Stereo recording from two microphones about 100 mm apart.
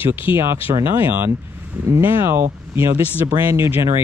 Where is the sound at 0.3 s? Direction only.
25° right (ahead or behind).